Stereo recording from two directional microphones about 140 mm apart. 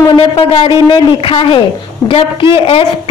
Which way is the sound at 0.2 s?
40° left (ahead or behind).